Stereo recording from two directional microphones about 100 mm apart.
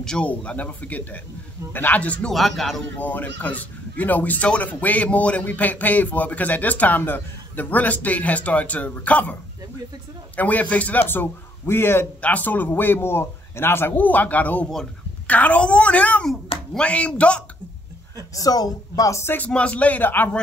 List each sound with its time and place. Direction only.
0.0 s speech: 10° left (ahead or behind)
2.3 s speech: centre (ahead or behind)
3.0 s a man's voice: 15° left (ahead or behind)
18.3 s speech: 40° left (ahead or behind)
19.3 s speech: 15° left (ahead or behind)